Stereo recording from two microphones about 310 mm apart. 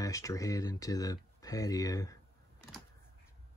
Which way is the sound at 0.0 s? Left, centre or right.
Centre.